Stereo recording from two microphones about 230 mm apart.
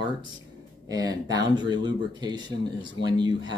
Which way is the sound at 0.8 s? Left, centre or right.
Centre.